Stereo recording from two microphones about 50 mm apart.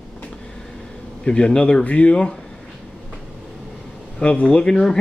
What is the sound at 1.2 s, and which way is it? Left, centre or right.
Speech, centre.